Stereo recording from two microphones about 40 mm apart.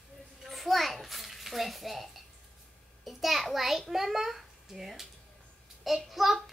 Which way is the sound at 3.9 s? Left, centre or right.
Centre.